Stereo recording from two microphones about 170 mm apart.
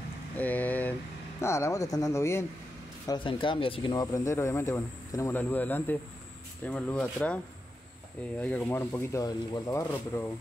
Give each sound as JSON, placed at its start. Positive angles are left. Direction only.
{"t": 0.4, "sound": "vehicle", "side_deg": 10}
{"t": 1.4, "sound": "speech", "side_deg": 15}
{"t": 3.1, "sound": "speech", "side_deg": 30}
{"t": 8.4, "sound": "speech", "side_deg": 10}